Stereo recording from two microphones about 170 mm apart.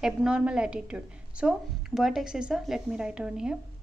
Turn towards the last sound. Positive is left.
turn(degrees=-5)  # may be behind; listen again after turning